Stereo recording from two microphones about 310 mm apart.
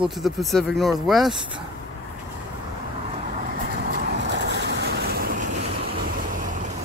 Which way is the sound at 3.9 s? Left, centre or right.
Right.